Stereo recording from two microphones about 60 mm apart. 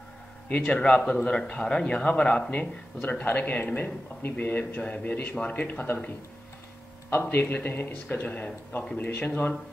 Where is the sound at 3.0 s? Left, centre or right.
Left.